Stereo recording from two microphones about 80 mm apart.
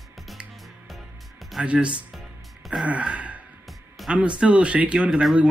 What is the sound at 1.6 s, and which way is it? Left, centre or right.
Speech, centre.